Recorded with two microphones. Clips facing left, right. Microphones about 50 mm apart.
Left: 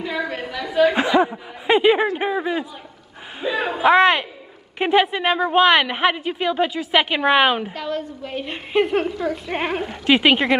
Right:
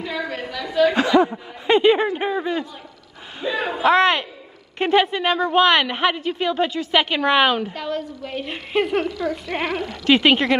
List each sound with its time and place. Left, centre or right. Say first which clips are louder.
0.0 s a sound: left 1 dB; centre
0.9 s speech: right 1 dB; centre
7.7 s a woman's voice: even; centre